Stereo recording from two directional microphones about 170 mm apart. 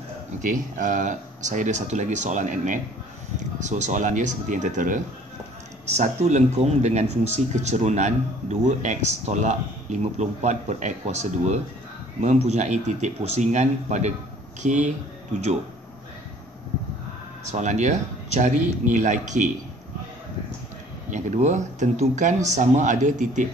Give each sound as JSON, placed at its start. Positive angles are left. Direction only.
{"t": 0.4, "sound": "speech", "side_deg": -50}
{"t": 17.5, "sound": "speech", "side_deg": -45}
{"t": 21.1, "sound": "speech", "side_deg": -45}